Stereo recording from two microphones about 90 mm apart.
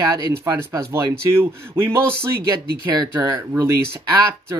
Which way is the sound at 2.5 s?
45° right (ahead or behind).